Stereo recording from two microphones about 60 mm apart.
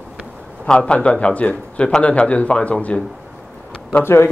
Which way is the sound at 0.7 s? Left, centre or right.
Centre.